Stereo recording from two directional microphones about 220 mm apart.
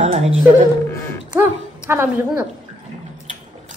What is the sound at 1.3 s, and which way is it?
A woman's voice, 10° right (ahead or behind).